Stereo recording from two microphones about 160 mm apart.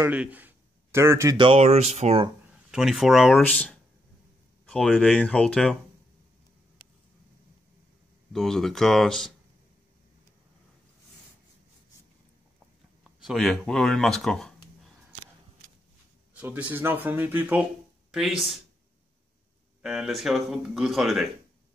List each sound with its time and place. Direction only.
0.0 s speech: 10° right (ahead or behind)
1.4 s speech: 40° right (ahead or behind)
2.7 s speech: centre (ahead or behind)
8.3 s speech: centre (ahead or behind)
13.2 s speech: centre (ahead or behind)
16.3 s speech: 10° right (ahead or behind)
19.8 s speech: centre (ahead or behind)